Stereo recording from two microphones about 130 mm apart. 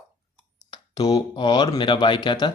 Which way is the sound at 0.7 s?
30° left (ahead or behind).